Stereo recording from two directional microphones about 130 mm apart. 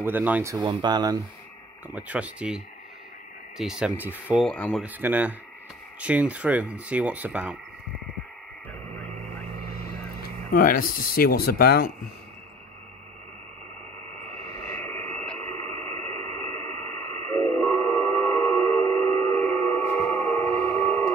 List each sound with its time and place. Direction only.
0.0 s speech: 15° right (ahead or behind)
0.7 s speech: 35° right (ahead or behind)
1.9 s speech: 10° right (ahead or behind)
3.9 s speech: 15° right (ahead or behind)
4.6 s speech: 5° left (ahead or behind)
4.8 s speech: 15° right (ahead or behind)
10.5 s speech: 90° left
14.7 s radio: 15° left (ahead or behind)